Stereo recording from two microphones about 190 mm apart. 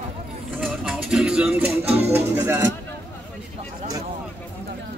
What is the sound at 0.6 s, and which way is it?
Music, 5° right (ahead or behind).